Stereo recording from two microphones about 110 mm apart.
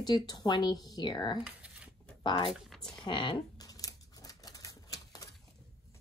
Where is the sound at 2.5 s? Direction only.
5° left (ahead or behind).